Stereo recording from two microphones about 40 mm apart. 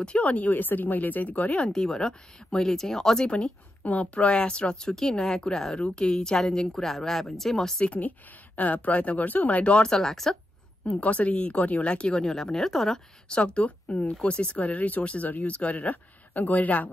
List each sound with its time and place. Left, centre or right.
0.0 s speech: left
0.5 s speech: left
1.7 s speech: centre
3.3 s speech: left
3.8 s speech: left; by 5.8 s centre
5.8 s speech: left
7.8 s speech: left
9.6 s speech: left
9.8 s speech: centre
11.0 s speech: left
12.4 s speech: centre
13.3 s speech: left